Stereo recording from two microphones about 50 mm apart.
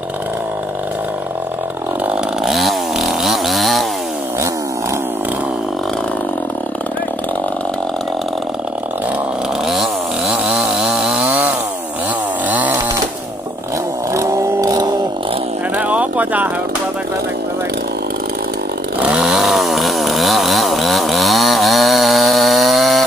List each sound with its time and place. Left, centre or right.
2.4 s chainsaw: centre
9.7 s chainsaw: centre
11.1 s chainsaw: right
14.1 s vehicle: right
15.7 s a sound: right
19.0 s chainsaw: centre